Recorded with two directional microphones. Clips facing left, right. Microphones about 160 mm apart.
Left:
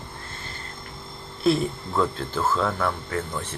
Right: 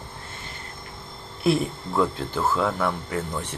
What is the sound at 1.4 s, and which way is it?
Speech, 15° right (ahead or behind).